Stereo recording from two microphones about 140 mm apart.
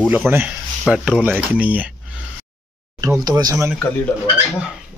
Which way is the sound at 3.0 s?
25° right (ahead or behind).